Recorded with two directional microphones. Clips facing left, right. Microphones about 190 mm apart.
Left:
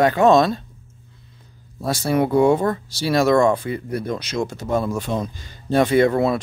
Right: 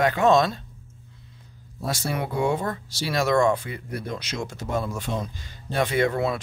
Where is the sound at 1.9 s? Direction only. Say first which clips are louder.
Left 9 dB; 35° left (ahead or behind).